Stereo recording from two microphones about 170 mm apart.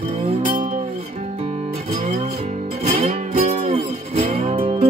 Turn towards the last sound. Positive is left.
turn(degrees=-35)  # may be behind; listen again after turning